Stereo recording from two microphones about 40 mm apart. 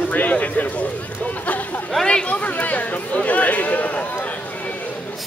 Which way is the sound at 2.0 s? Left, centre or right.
Left.